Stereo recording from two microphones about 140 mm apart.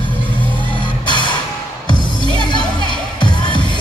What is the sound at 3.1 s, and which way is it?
Music, 35° left (ahead or behind).